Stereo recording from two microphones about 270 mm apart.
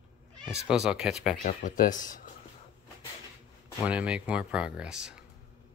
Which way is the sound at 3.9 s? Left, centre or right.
Centre.